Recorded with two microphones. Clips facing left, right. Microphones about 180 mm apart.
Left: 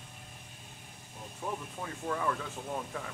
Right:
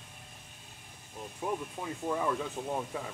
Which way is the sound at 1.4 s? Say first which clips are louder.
Right 3 dB; 15° right (ahead or behind).